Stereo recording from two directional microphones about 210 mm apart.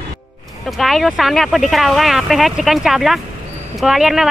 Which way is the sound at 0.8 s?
Centre (ahead or behind).